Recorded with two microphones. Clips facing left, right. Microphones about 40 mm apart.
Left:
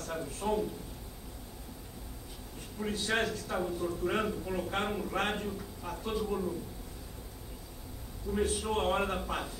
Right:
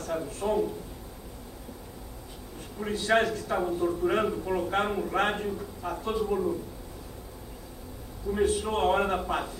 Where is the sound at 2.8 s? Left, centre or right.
Centre.